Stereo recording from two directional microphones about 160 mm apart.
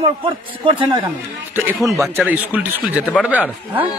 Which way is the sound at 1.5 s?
15° right (ahead or behind).